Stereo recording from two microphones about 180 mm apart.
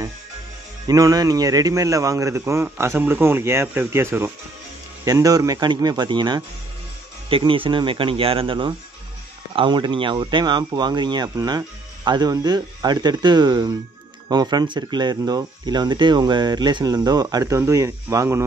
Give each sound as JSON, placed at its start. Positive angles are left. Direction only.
{"t": 0.8, "sound": "a man's voice", "side_deg": -20}